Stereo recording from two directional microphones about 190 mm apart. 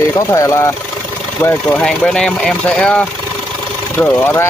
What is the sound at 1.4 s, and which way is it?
Speech, 5° left (ahead or behind).